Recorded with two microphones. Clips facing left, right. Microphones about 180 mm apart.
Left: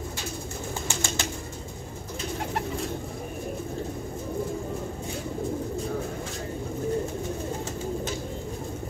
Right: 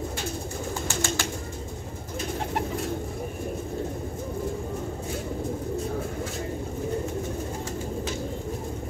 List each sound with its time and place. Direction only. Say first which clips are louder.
0.8 s bird: right 3 dB; 15° left (ahead or behind)